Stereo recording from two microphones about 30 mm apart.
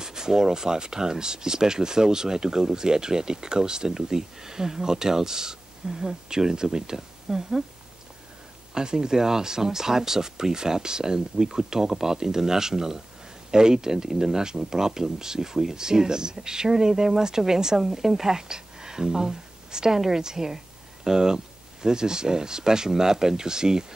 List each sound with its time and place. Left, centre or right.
0.0 s speech: centre
8.7 s a woman's voice: right